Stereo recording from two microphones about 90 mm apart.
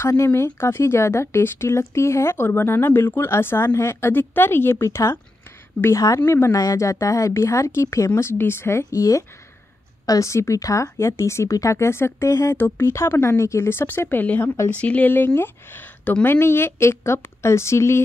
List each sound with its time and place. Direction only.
0.0 s speech: 30° left (ahead or behind)
8.9 s speech: 40° left (ahead or behind)
12.5 s speech: 20° left (ahead or behind)